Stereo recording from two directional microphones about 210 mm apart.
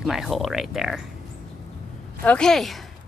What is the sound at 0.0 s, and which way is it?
A woman's voice, centre (ahead or behind).